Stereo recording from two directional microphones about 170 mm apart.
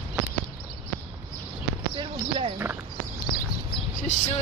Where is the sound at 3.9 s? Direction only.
45° left (ahead or behind).